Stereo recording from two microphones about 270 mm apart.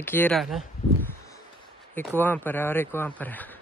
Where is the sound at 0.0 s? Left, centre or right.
Centre.